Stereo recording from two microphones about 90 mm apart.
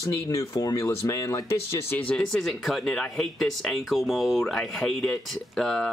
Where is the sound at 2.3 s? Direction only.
5° left (ahead or behind).